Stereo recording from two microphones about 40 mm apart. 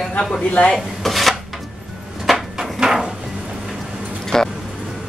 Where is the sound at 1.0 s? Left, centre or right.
Centre.